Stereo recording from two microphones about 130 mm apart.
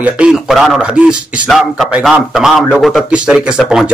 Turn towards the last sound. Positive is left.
turn(degrees=-5)  # may be behind; listen again after turning